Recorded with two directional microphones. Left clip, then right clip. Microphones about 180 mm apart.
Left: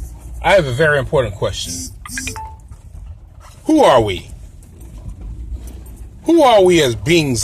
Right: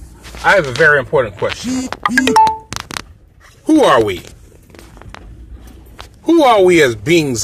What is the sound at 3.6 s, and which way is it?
Speech, 10° left (ahead or behind).